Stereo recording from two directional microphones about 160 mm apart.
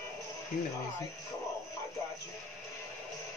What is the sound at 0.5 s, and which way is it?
Speech, 55° left (ahead or behind).